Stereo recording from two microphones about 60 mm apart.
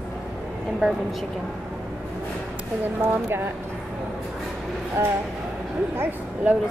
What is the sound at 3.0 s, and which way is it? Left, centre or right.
Speech, right.